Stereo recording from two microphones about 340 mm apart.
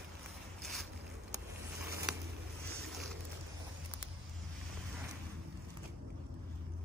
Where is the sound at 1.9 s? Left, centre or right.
Centre.